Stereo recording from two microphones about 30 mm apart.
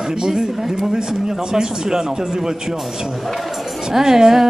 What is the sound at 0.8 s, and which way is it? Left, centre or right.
Speech, centre.